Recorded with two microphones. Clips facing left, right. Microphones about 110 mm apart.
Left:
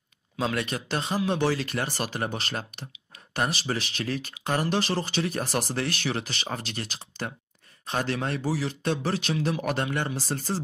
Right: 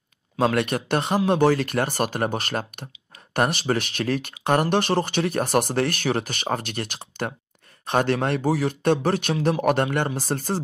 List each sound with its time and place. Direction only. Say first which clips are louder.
0.4 s speech: right 7 dB; 55° right (ahead or behind)